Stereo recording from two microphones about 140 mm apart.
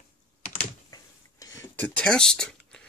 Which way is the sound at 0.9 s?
25° left (ahead or behind).